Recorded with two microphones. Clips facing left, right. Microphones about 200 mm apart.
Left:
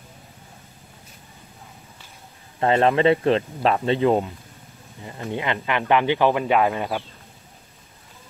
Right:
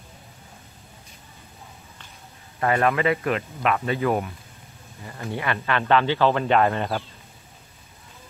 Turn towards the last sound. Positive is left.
turn(degrees=10)  # may be behind; listen again after turning